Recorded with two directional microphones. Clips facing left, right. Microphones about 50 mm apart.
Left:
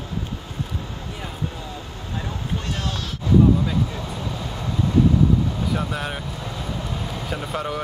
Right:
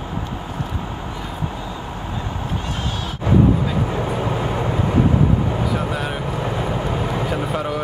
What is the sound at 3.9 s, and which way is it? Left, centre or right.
Vehicle, right.